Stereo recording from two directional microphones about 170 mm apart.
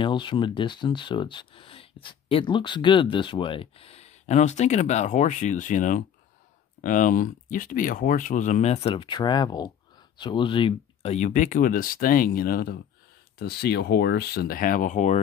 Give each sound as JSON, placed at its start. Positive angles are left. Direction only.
{"t": 0.0, "sound": "speech", "side_deg": 30}